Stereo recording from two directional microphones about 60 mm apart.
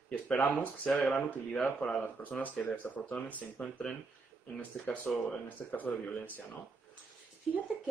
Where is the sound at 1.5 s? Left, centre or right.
Centre.